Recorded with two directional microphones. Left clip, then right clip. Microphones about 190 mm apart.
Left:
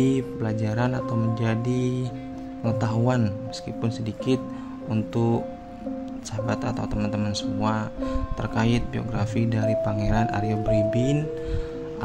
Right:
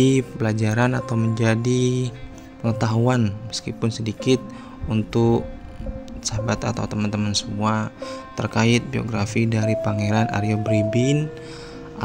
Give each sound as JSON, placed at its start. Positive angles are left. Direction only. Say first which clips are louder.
{"t": 0.0, "sound": "speech", "louder": "right 5 dB", "side_deg": -20}